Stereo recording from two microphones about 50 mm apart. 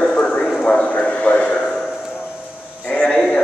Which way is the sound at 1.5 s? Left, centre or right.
Centre.